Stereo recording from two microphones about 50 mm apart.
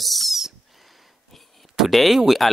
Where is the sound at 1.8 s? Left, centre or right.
Centre.